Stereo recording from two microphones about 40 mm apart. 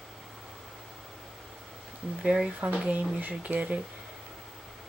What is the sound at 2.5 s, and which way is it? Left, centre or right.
Speech, right.